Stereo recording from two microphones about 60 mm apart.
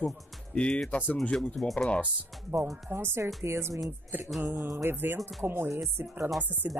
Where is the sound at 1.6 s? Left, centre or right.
Centre.